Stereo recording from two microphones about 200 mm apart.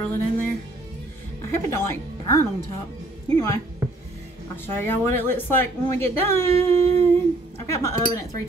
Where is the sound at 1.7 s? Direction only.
15° left (ahead or behind).